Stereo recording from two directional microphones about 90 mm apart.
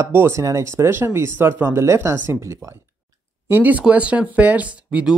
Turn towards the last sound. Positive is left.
turn(degrees=-15)  # may be behind; listen again after turning